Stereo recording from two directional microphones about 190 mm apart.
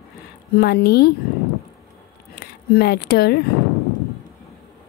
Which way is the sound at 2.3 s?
55° left (ahead or behind).